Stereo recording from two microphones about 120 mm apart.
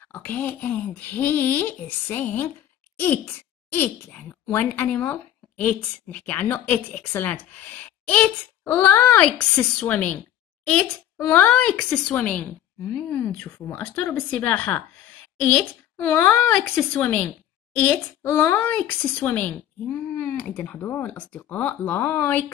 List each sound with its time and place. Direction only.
0.1 s speech: 15° left (ahead or behind)
7.8 s a sound: 10° left (ahead or behind)
8.9 s speech: 10° left (ahead or behind)
11.2 s speech: 15° left (ahead or behind)
16.0 s a child's voice: 20° left (ahead or behind)
18.6 s speech: 10° left (ahead or behind)